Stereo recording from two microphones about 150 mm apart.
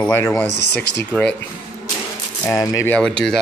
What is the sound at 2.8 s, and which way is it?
Speech, 5° left (ahead or behind).